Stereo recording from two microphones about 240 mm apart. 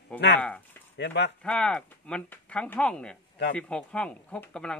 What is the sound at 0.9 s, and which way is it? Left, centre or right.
Speech, left.